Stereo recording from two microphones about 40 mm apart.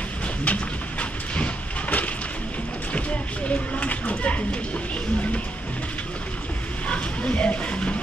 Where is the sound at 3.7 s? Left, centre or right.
Left.